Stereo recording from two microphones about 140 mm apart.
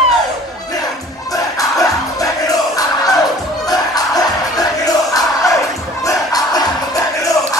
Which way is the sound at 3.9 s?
25° left (ahead or behind).